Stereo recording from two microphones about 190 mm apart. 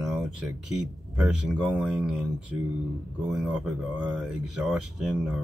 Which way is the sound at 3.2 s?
5° right (ahead or behind).